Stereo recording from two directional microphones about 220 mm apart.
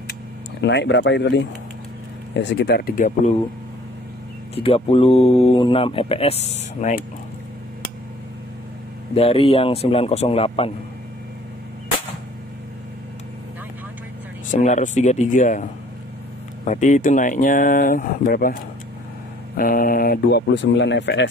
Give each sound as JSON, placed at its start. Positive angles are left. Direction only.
{"t": 0.6, "sound": "speech", "side_deg": 55}
{"t": 4.6, "sound": "speech", "side_deg": 25}
{"t": 9.1, "sound": "speech", "side_deg": 25}
{"t": 14.5, "sound": "speech", "side_deg": 35}
{"t": 16.6, "sound": "speech", "side_deg": 35}